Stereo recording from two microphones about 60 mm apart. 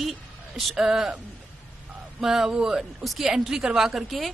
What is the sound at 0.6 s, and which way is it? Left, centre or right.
A woman's voice, centre.